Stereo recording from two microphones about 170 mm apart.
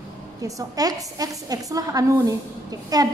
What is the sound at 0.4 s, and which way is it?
A woman's voice, 20° right (ahead or behind).